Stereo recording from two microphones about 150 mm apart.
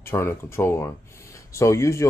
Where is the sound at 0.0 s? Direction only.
15° left (ahead or behind).